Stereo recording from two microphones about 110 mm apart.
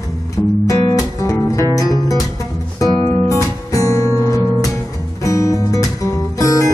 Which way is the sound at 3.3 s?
30° left (ahead or behind).